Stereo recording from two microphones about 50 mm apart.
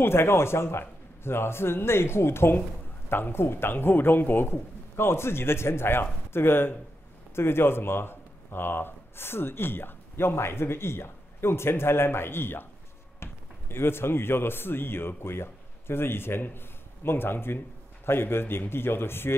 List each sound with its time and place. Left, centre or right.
0.0 s a man's voice: left